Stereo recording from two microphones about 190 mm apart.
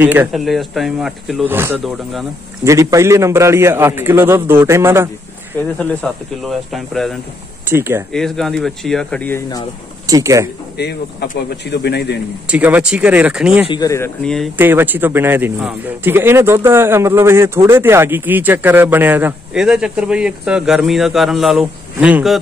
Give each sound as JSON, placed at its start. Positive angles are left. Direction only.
{"t": 0.0, "sound": "speech", "side_deg": -10}
{"t": 1.5, "sound": "speech", "side_deg": -10}
{"t": 5.5, "sound": "speech", "side_deg": 10}
{"t": 7.6, "sound": "speech", "side_deg": -10}
{"t": 8.1, "sound": "speech", "side_deg": 0}
{"t": 10.0, "sound": "speech", "side_deg": -20}
{"t": 10.8, "sound": "a man's voice", "side_deg": 60}
{"t": 12.4, "sound": "speech", "side_deg": -10}
{"t": 13.7, "sound": "speech", "side_deg": 20}
{"t": 14.2, "sound": "speech", "side_deg": 0}
{"t": 14.6, "sound": "speech", "side_deg": -10}